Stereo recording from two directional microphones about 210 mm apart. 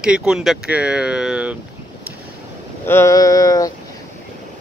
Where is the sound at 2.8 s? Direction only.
10° left (ahead or behind).